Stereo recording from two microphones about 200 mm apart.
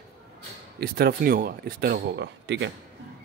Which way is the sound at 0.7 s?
50° right (ahead or behind).